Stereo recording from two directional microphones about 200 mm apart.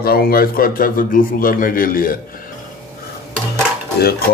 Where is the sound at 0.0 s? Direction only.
50° left (ahead or behind).